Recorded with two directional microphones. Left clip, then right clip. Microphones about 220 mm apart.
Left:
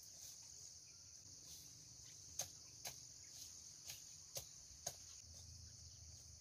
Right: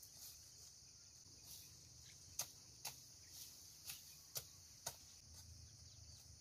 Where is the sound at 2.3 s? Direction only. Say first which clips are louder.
Even; 15° right (ahead or behind).